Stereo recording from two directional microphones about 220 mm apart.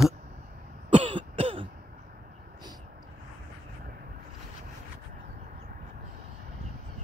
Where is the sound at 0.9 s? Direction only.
25° right (ahead or behind).